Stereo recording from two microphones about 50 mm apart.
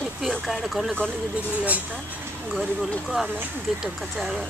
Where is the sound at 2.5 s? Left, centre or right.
Centre.